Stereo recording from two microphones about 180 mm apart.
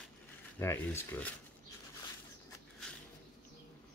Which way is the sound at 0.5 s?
15° left (ahead or behind).